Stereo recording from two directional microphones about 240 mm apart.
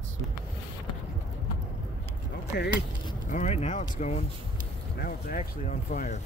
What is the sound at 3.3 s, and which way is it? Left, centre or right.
Speech, left.